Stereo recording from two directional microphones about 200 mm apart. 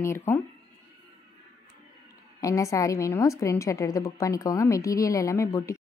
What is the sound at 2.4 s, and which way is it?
A woman's voice, 15° left (ahead or behind).